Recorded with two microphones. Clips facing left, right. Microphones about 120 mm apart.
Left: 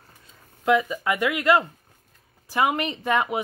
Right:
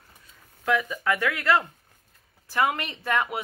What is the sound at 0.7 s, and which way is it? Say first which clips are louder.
Speech: left 4 dB; 20° left (ahead or behind).